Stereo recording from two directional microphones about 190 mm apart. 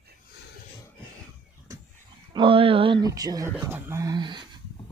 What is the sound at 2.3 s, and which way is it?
Speech, 25° right (ahead or behind).